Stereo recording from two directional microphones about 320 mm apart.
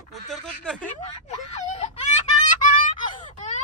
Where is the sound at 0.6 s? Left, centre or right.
Centre.